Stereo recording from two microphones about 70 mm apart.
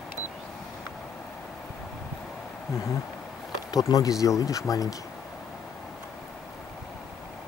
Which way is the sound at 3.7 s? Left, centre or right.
Left.